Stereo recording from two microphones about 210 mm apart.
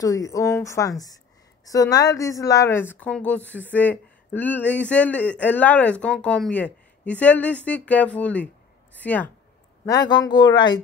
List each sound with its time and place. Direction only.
0.0 s a woman's voice: 15° left (ahead or behind)
9.8 s speech: 20° left (ahead or behind)